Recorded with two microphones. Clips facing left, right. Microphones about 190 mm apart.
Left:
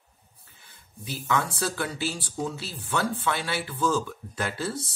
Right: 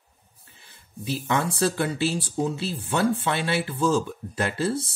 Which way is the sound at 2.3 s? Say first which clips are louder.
Right 6 dB; 25° right (ahead or behind).